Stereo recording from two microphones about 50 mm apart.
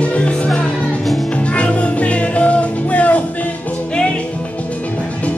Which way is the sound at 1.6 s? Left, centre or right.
Left.